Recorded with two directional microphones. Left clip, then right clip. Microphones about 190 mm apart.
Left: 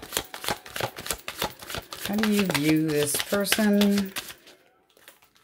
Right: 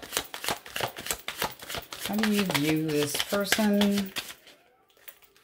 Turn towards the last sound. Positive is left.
turn(degrees=30)  # may be behind; listen again after turning